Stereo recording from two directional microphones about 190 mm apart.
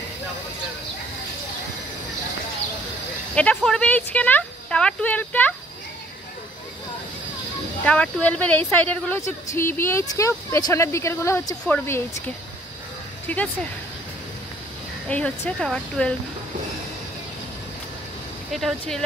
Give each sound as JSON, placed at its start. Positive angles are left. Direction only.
{"t": 3.3, "sound": "speech", "side_deg": 5}
{"t": 7.8, "sound": "speech", "side_deg": 5}
{"t": 13.3, "sound": "speech", "side_deg": 10}
{"t": 15.0, "sound": "speech", "side_deg": 5}
{"t": 18.5, "sound": "speech", "side_deg": 0}